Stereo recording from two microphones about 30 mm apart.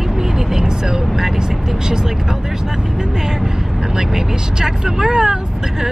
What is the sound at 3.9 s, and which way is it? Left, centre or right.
Speech, right.